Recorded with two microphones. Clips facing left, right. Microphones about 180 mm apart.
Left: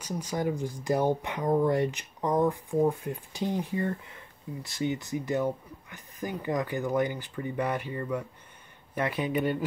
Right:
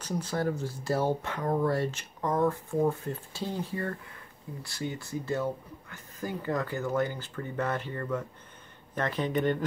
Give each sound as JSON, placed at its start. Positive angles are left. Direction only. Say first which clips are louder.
{"t": 0.0, "sound": "speech", "louder": "even", "side_deg": 10}